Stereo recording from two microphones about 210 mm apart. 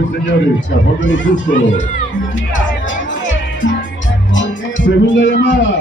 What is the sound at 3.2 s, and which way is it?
Music, 60° left (ahead or behind).